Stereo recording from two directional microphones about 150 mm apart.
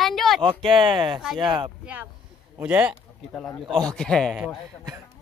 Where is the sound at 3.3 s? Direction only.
10° left (ahead or behind).